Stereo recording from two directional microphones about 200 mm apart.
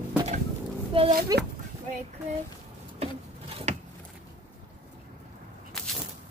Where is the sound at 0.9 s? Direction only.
30° right (ahead or behind).